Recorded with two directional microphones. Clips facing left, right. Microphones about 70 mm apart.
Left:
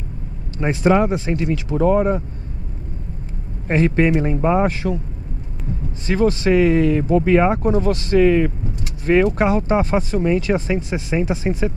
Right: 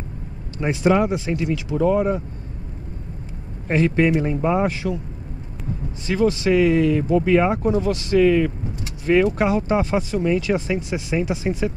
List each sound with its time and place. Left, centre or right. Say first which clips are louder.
0.6 s speech: left 2 dB; left
3.6 s speech: left 1 dB; left
6.0 s speech: left 2 dB; left